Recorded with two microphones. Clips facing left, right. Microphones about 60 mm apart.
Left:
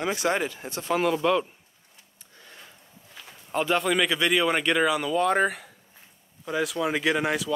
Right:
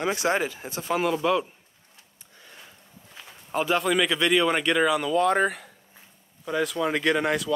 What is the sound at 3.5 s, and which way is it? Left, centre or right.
Speech, centre.